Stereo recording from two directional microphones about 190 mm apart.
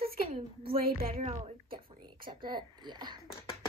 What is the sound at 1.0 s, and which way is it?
A child's voice, 35° right (ahead or behind).